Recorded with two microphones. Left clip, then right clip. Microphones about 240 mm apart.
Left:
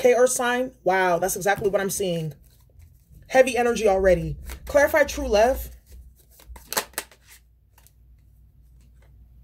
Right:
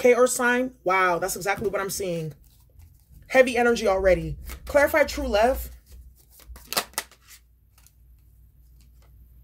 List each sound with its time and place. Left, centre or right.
0.0 s speech: right
6.5 s shuffling cards: centre